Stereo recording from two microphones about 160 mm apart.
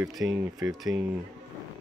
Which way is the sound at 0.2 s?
15° right (ahead or behind).